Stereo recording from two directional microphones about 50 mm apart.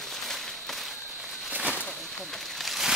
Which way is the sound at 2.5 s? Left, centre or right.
Centre.